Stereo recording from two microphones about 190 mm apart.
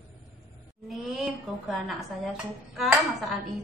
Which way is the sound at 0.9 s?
Centre (ahead or behind).